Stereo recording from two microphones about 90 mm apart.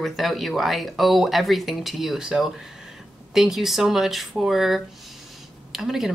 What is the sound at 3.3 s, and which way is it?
Speech, 5° right (ahead or behind).